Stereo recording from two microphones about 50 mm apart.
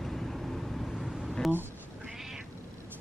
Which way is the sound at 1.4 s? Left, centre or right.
Centre.